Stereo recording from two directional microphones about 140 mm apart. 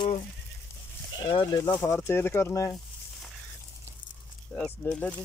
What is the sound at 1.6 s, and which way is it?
Speech, 20° left (ahead or behind).